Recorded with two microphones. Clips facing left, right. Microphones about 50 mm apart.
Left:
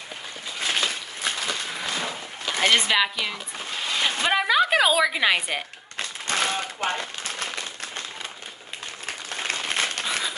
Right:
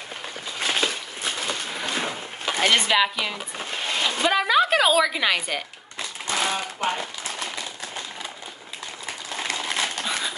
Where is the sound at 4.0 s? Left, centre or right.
Left.